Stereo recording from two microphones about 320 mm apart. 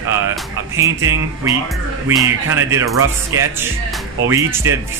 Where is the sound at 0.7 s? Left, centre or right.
Centre.